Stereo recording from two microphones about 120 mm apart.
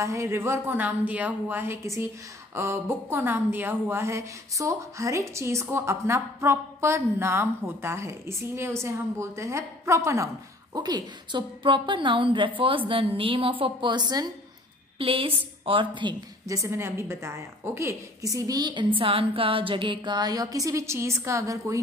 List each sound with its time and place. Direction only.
0.0 s speech: 25° right (ahead or behind)
15.0 s a woman's voice: 50° right (ahead or behind)
16.4 s speech: 25° right (ahead or behind)
18.9 s a woman's voice: 50° right (ahead or behind); by 21.7 s 25° right (ahead or behind)